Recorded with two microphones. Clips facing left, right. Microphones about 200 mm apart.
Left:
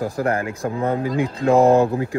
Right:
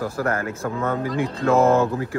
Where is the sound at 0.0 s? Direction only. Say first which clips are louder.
Left 2 dB; 15° left (ahead or behind).